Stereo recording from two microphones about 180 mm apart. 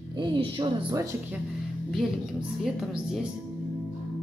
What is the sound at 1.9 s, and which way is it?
A woman's voice, centre (ahead or behind).